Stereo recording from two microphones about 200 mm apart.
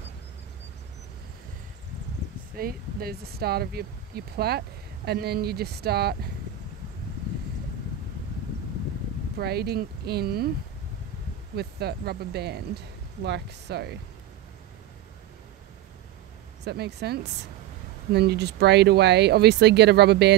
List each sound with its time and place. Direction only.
2.5 s speech: 50° right (ahead or behind)
9.4 s speech: 55° right (ahead or behind)
11.5 s speech: 55° right (ahead or behind)
16.6 s speech: 55° right (ahead or behind)